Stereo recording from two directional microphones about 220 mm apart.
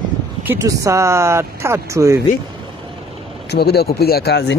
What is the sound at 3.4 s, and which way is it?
Speech, 45° left (ahead or behind).